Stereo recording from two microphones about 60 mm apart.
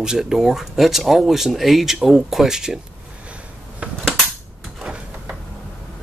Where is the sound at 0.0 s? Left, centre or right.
Centre.